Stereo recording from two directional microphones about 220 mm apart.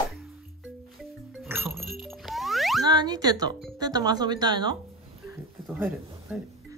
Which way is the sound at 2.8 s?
20° right (ahead or behind).